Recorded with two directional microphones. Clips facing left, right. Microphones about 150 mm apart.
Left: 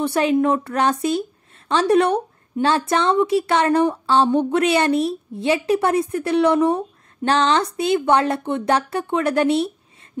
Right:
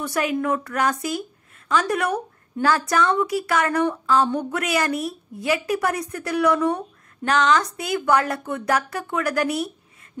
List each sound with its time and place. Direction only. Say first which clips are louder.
0.0 s speech: left 6 dB; 25° left (ahead or behind)